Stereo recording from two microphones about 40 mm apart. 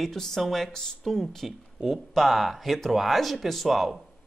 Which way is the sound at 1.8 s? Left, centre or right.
Right.